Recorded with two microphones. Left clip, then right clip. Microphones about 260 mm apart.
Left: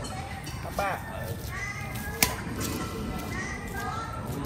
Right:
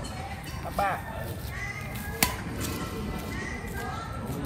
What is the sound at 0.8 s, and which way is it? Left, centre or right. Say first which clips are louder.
Vehicle: right 2 dB; right.